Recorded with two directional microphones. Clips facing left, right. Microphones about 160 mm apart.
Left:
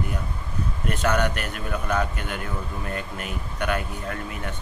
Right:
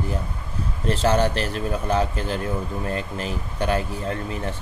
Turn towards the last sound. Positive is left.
turn(degrees=-30)  # may be behind; listen again after turning